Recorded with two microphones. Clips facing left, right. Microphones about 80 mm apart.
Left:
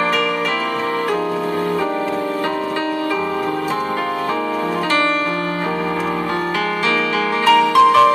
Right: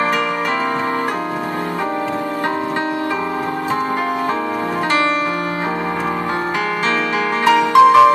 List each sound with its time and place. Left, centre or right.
7.4 s music: centre